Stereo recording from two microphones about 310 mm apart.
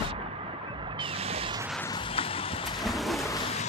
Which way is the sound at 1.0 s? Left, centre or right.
Centre.